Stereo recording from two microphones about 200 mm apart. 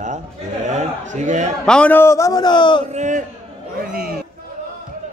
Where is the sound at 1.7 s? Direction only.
5° left (ahead or behind); by 2.8 s 25° left (ahead or behind).